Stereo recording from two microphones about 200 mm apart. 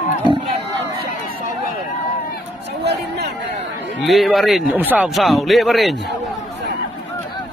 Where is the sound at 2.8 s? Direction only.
55° right (ahead or behind).